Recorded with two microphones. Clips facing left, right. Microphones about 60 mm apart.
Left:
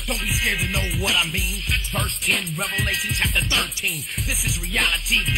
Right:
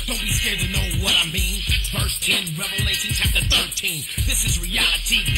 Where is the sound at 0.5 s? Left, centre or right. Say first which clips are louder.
Left 2 dB; left.